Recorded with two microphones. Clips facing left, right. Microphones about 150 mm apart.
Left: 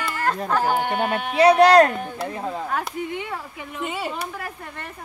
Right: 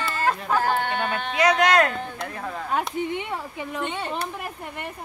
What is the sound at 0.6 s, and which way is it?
Speech, 15° left (ahead or behind).